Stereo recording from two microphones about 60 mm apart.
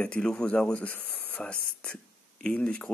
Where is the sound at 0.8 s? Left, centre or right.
Left.